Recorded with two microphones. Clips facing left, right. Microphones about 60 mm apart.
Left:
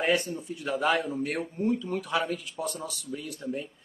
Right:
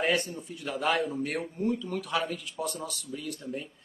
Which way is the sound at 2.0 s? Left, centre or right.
Centre.